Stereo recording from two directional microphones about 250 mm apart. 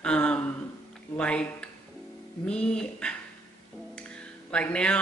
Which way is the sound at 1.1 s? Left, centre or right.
Centre.